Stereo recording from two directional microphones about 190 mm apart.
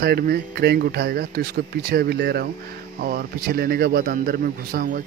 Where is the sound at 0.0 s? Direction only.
55° right (ahead or behind).